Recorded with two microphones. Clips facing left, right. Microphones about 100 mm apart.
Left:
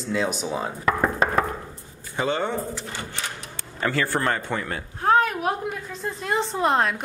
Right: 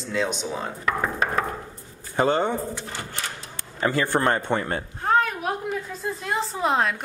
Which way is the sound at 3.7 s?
20° right (ahead or behind).